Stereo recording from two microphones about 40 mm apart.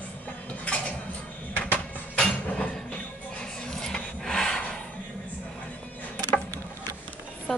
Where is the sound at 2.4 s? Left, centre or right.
Left.